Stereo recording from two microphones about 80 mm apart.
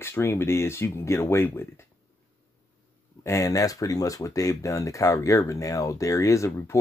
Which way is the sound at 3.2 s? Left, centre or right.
Left.